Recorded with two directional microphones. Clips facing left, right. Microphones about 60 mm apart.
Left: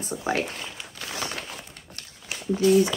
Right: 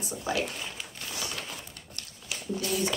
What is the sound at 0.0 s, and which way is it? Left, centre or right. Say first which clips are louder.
Speech: left 4 dB; left.